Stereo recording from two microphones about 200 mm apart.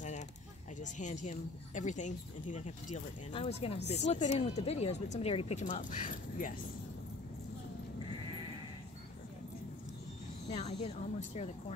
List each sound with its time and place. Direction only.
0.7 s speech: 40° left (ahead or behind)
10.5 s speech: 35° left (ahead or behind)